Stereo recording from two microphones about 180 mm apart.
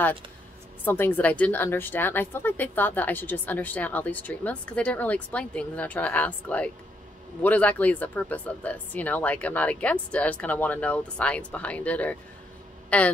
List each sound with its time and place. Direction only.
0.8 s a woman's voice: 10° left (ahead or behind)